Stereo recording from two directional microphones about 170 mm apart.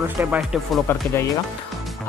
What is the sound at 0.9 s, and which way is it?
Speech, 15° left (ahead or behind).